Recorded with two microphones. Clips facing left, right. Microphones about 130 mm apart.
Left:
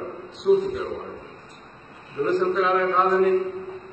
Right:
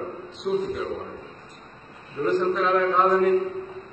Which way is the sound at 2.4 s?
Centre (ahead or behind).